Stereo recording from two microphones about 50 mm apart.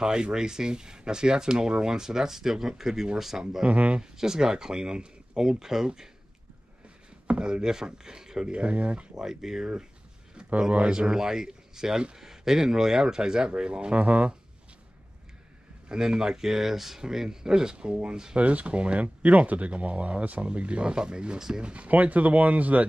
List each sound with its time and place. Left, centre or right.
0.0 s speech: centre
3.6 s speech: right
4.0 s speech: centre
7.2 s speech: right
9.2 s speech: centre
10.7 s speech: centre
15.9 s speech: centre; by 22.8 s right